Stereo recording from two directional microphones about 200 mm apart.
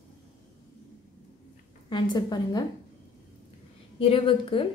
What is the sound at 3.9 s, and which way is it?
Speech, 25° left (ahead or behind).